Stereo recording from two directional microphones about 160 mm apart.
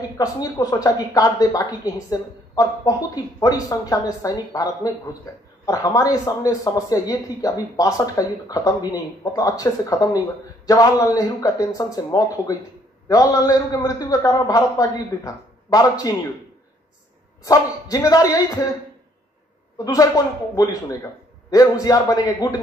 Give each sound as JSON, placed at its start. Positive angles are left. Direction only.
{"t": 0.2, "sound": "speech", "side_deg": 20}
{"t": 17.4, "sound": "speech", "side_deg": 20}
{"t": 19.8, "sound": "speech", "side_deg": 20}